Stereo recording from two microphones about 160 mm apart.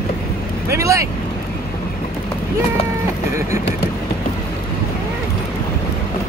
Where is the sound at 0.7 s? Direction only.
20° right (ahead or behind).